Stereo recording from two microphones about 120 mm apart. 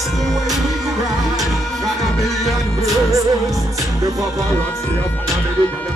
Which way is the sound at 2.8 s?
25° right (ahead or behind).